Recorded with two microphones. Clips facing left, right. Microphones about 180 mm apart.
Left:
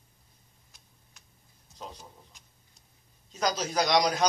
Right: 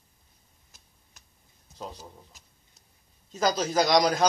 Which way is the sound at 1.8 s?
5° right (ahead or behind).